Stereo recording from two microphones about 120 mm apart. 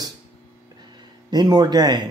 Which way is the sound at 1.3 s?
35° right (ahead or behind).